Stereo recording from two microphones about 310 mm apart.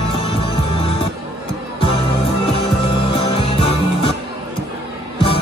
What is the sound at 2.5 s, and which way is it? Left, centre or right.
Music, centre.